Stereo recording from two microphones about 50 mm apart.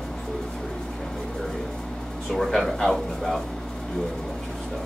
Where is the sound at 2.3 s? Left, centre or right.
Centre.